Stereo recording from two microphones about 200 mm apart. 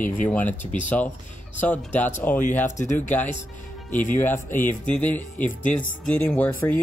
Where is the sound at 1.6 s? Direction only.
5° left (ahead or behind).